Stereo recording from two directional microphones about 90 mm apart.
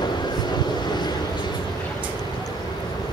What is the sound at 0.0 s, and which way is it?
Vehicle, 55° left (ahead or behind).